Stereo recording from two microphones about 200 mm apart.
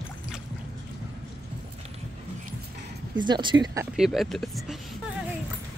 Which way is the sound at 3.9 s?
Centre (ahead or behind).